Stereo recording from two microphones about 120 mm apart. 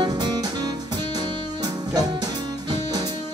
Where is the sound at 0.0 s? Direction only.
35° right (ahead or behind).